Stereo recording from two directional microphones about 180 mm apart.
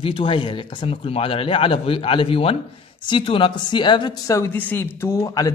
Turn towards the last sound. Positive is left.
turn(degrees=20)  # may be behind; listen again after turning